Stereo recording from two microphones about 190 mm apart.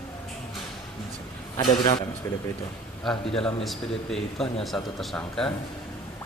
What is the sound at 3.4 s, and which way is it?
A man's voice, centre (ahead or behind).